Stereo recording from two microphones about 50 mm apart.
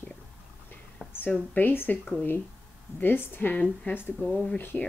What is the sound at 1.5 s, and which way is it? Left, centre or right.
Speech, left.